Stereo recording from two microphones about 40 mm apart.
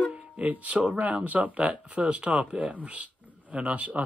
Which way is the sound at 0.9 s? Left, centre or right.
Right.